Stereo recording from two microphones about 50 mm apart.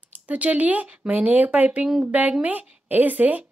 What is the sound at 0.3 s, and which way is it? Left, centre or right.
Speech, right.